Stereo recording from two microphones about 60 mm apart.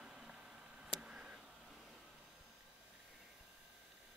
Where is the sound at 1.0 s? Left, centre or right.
Centre.